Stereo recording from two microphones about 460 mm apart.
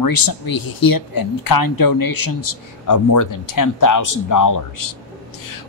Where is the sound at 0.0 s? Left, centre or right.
Left.